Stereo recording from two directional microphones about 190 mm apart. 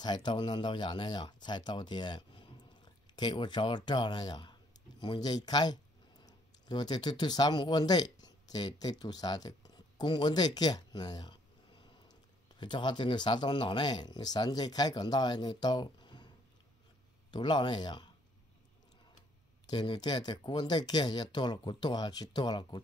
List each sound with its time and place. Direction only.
0.0 s speech: 25° left (ahead or behind)
17.3 s speech: 25° left (ahead or behind)
19.6 s speech: 25° left (ahead or behind)